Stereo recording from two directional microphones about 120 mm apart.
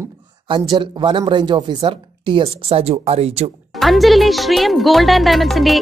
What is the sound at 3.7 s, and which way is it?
Speech, centre (ahead or behind).